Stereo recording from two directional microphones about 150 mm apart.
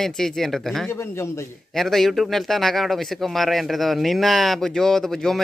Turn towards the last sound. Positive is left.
turn(degrees=0)  # may be behind; listen again after turning